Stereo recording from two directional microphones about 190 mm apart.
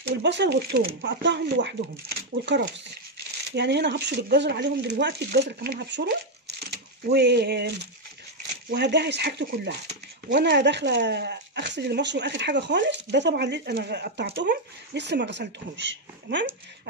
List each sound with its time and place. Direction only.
0.2 s speech: 65° right (ahead or behind)
9.8 s speech: 45° right (ahead or behind)
10.4 s speech: 65° right (ahead or behind)